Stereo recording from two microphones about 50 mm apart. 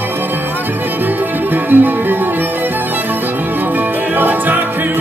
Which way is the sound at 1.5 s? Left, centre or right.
Right.